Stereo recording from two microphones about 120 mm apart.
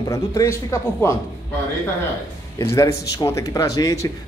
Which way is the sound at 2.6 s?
20° left (ahead or behind).